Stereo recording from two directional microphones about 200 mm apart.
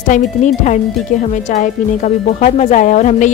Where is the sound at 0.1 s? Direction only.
40° left (ahead or behind).